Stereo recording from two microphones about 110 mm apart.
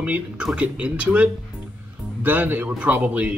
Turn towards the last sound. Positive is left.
turn(degrees=-15)  # may be behind; listen again after turning